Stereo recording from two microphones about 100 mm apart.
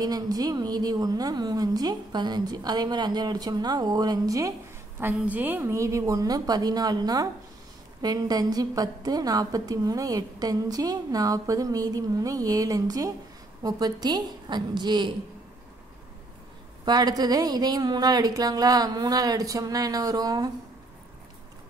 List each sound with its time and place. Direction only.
0.0 s a woman's voice: 40° right (ahead or behind)
5.0 s a woman's voice: 20° right (ahead or behind); by 15.0 s 50° right (ahead or behind)
16.8 s a woman's voice: 45° right (ahead or behind)